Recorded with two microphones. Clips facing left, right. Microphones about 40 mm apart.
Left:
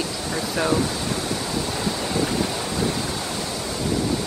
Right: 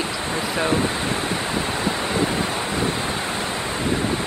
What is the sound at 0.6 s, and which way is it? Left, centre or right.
Speech, right.